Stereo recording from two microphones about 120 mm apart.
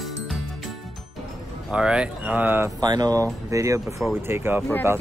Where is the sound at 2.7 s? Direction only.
35° right (ahead or behind); by 4.6 s 20° right (ahead or behind).